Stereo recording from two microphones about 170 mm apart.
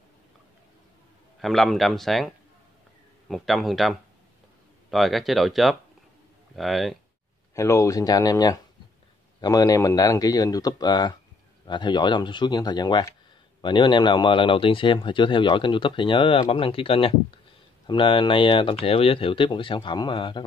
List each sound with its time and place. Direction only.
1.4 s speech: centre (ahead or behind)
7.5 s speech: 15° left (ahead or behind)